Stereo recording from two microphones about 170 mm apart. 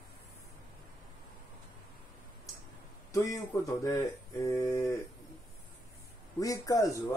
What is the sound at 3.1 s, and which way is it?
Speech, 15° left (ahead or behind).